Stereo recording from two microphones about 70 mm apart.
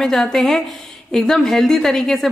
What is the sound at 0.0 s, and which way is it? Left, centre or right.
A woman's voice, centre.